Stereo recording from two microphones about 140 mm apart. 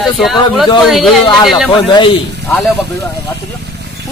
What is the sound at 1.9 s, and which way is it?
Speech, 35° left (ahead or behind).